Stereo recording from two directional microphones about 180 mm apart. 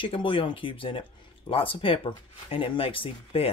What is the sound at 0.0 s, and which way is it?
Speech, 30° left (ahead or behind).